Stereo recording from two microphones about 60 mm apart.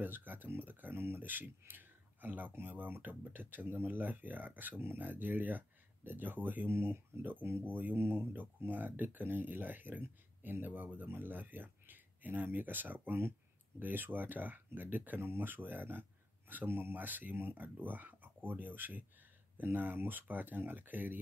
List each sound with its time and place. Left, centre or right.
0.0 s speech: right